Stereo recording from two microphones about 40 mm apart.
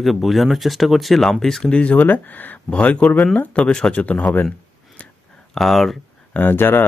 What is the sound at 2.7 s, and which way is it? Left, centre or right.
Speech, left.